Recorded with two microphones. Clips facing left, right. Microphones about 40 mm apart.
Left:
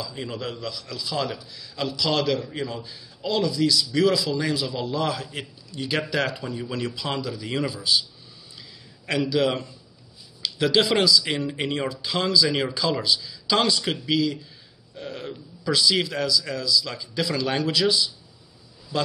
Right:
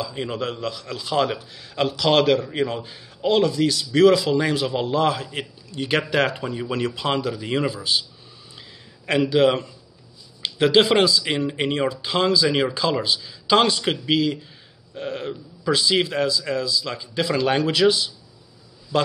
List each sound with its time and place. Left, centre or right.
0.0 s a man's voice: right
8.5 s a sound: right
10.4 s a man's voice: right
12.4 s speech: centre
13.0 s a man's voice: right